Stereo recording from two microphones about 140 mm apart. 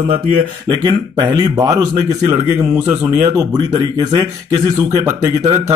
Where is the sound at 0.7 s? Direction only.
25° right (ahead or behind).